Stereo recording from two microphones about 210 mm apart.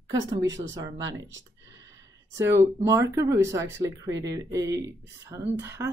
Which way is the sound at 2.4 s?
10° right (ahead or behind).